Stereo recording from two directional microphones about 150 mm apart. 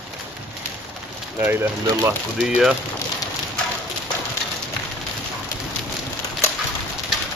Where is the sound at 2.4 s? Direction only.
5° right (ahead or behind).